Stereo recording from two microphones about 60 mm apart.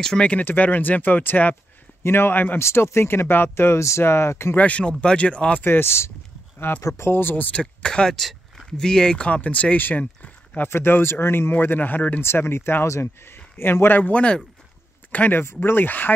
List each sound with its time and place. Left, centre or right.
0.0 s speech: centre
0.5 s speech: left
2.6 s speech: left
4.6 s speech: left
5.7 s speech: left
6.8 s speech: left
7.1 s speech: left
7.5 s speech: centre
10.7 s speech: left
12.2 s speech: left
15.4 s speech: left